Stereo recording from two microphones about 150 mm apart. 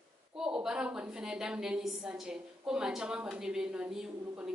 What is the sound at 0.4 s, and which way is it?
A woman's voice, 5° right (ahead or behind).